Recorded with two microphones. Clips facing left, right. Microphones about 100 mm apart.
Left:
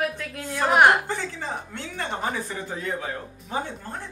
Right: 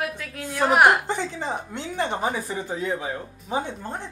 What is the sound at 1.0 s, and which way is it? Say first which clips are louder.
A woman's voice: right 3 dB; 20° right (ahead or behind).